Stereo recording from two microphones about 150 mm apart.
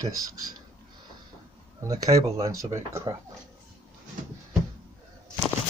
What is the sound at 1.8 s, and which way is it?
Speech, 25° right (ahead or behind).